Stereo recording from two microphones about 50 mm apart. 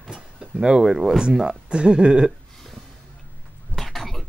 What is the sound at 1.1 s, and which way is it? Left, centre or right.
Speech, centre.